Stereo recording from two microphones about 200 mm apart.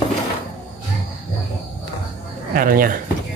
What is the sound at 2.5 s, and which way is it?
Speech, 45° right (ahead or behind).